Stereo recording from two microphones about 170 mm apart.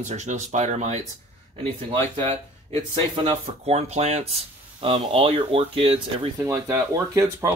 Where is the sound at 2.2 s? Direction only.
35° right (ahead or behind).